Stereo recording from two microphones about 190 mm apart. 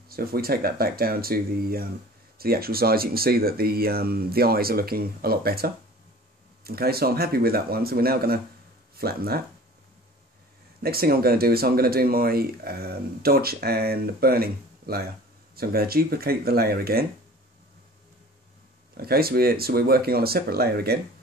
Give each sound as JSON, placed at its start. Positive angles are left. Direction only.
{"t": 0.1, "sound": "speech", "side_deg": -55}
{"t": 10.8, "sound": "speech", "side_deg": -55}
{"t": 18.9, "sound": "speech", "side_deg": -55}